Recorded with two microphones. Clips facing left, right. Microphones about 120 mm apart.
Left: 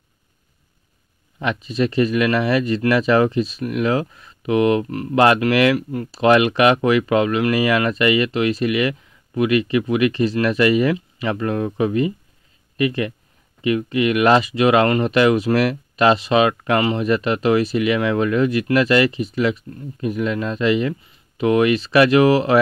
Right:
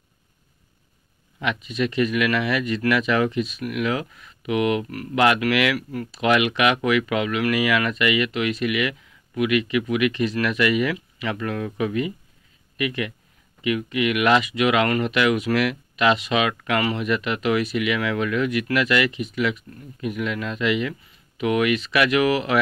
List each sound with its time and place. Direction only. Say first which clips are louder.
1.4 s speech: left 4 dB; 35° left (ahead or behind)